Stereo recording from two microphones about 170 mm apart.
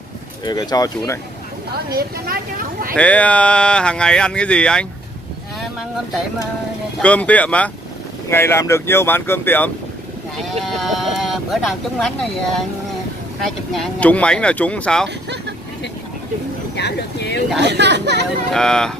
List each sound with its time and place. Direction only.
0.5 s speech: 25° left (ahead or behind)
2.0 s speech: 60° right (ahead or behind)
3.0 s speech: 10° left (ahead or behind)
7.0 s speech: 10° left (ahead or behind)
10.3 s speech: centre (ahead or behind)
13.7 s speech: 5° left (ahead or behind)
16.7 s speech: 80° left
17.6 s speech: 85° right
18.5 s speech: 5° left (ahead or behind)